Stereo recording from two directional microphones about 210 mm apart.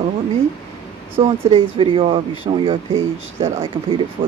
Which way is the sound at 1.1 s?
25° right (ahead or behind).